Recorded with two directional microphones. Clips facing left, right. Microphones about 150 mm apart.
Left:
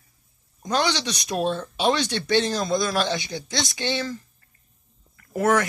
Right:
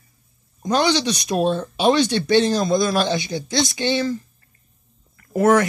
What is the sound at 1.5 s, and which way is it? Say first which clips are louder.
Speech: right 5 dB; 15° right (ahead or behind).